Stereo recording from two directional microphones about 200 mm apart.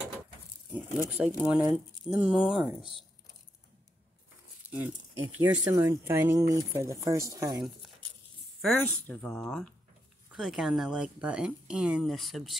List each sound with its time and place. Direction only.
1.1 s speech: 5° right (ahead or behind)
4.6 s speech: 10° right (ahead or behind)
8.5 s speech: 5° left (ahead or behind)